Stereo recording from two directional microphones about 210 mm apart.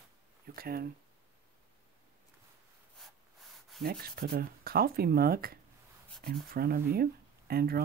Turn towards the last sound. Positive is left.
turn(degrees=-45)  # may be behind; listen again after turning